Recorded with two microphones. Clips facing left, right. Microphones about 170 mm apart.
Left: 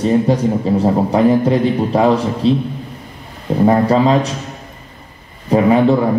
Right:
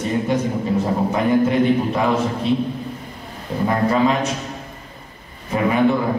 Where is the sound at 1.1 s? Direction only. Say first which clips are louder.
Left 3 dB; 35° left (ahead or behind).